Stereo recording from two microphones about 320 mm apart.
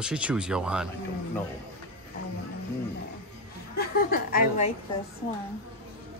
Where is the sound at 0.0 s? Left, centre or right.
Centre.